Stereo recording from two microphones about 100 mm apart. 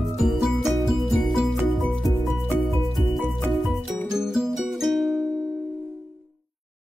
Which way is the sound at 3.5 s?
Centre (ahead or behind).